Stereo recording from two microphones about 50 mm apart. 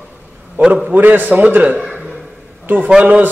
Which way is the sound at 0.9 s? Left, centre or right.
Right.